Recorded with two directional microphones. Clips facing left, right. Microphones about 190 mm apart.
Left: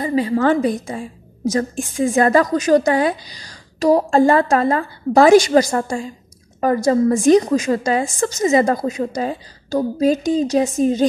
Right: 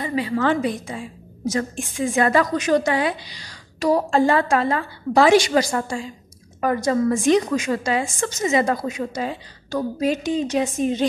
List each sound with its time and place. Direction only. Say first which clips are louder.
0.0 s a woman's voice: left 5 dB; 35° left (ahead or behind)